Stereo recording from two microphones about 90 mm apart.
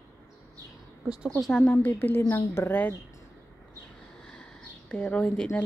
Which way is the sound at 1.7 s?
25° left (ahead or behind).